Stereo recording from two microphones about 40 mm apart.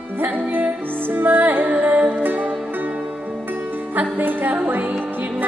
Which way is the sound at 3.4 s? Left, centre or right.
Right.